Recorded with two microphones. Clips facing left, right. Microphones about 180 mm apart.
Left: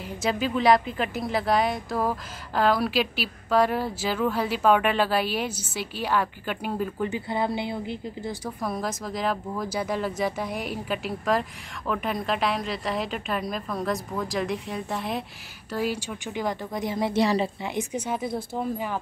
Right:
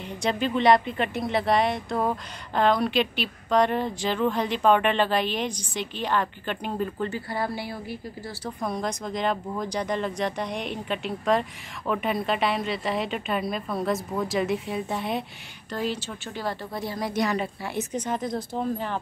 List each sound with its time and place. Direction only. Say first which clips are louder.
0.0 s speech: even; 5° left (ahead or behind)
7.1 s speech: left 2 dB; 20° left (ahead or behind)
8.5 s speech: right 2 dB; 5° left (ahead or behind); by 17.5 s 30° left (ahead or behind)
17.6 s speech: even; 10° left (ahead or behind)